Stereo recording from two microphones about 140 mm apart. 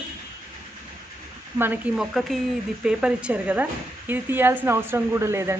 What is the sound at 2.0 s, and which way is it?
Speech, centre (ahead or behind).